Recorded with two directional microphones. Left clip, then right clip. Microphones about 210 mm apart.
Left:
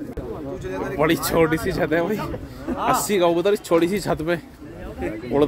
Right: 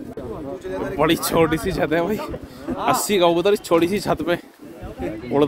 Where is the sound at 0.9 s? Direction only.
Centre (ahead or behind).